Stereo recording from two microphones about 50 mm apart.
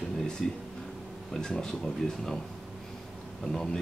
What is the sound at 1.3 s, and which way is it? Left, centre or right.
Speech, centre.